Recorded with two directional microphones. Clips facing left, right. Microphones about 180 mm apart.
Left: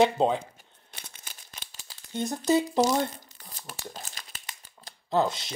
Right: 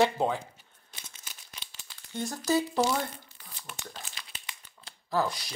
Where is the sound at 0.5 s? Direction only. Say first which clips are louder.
Left 3 dB; 60° left (ahead or behind).